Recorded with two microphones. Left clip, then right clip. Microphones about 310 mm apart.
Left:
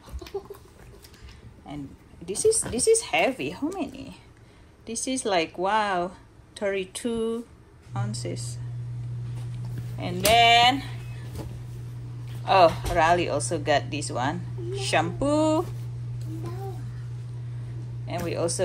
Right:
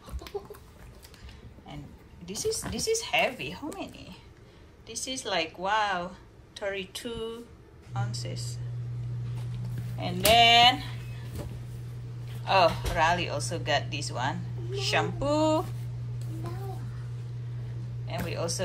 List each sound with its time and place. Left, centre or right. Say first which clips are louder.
2.2 s speech: left 8 dB; centre
10.0 s speech: left 2 dB; centre
12.4 s speech: left 5 dB; centre
18.0 s a sound: left 5 dB; centre